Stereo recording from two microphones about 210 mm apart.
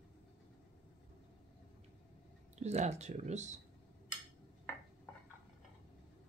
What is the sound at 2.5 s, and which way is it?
Speech, 35° right (ahead or behind).